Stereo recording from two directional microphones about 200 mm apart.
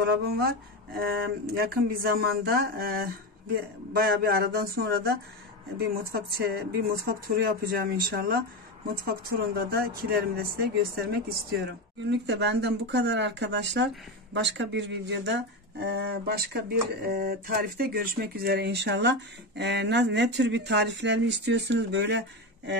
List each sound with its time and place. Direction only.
0.0 s speech: 50° right (ahead or behind)